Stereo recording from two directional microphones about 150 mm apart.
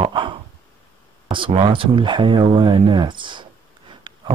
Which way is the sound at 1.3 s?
35° right (ahead or behind).